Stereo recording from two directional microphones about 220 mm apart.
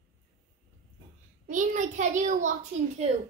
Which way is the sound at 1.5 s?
35° right (ahead or behind).